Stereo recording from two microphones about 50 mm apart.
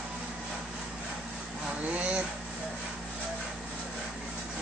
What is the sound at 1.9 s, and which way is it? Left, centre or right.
Speech, right.